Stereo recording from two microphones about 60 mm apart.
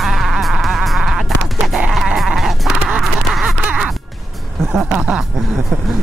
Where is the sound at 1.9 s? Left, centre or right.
Centre.